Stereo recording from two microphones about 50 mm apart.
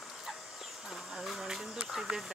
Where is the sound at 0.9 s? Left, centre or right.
Centre.